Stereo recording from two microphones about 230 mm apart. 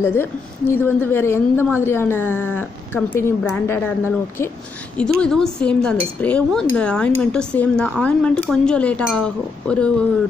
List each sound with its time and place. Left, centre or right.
0.0 s speech: centre
5.2 s cutlery: centre